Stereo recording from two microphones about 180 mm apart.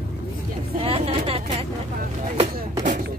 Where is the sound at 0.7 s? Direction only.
35° right (ahead or behind).